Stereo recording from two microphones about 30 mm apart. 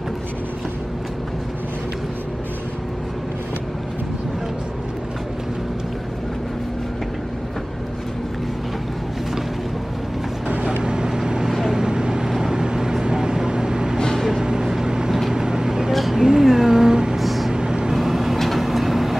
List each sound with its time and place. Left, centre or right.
10.8 s vehicle: right
13.9 s vehicle: left
14.4 s vehicle: right
15.9 s vehicle: centre
16.2 s a sound: right
17.2 s vehicle: centre
17.5 s vehicle: right
17.9 s vehicle: centre